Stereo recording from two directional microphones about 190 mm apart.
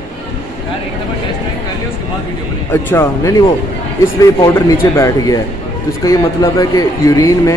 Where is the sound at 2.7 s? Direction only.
15° left (ahead or behind).